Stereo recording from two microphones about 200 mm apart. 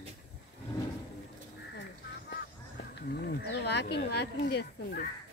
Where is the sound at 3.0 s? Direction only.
55° left (ahead or behind).